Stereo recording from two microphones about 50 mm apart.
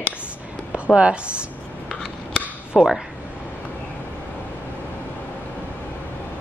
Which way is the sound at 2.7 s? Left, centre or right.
Centre.